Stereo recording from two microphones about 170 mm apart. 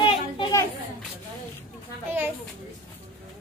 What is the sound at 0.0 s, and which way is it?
Children playing, 30° left (ahead or behind).